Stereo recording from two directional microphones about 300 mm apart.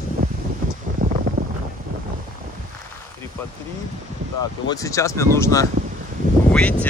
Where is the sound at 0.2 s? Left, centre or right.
Right.